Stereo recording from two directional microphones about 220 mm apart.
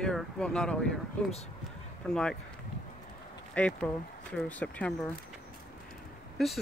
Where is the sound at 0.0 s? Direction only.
5° left (ahead or behind).